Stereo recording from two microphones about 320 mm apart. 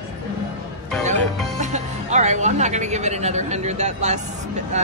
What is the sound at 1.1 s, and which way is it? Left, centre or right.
Music, right.